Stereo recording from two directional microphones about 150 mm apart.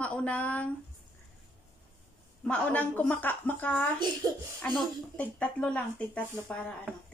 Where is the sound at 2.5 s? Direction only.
10° left (ahead or behind).